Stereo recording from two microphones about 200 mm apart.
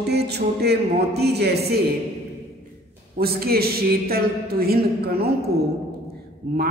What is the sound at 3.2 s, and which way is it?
A man's voice, 50° right (ahead or behind).